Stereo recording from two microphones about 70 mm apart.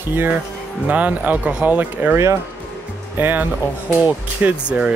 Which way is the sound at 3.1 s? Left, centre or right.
Right.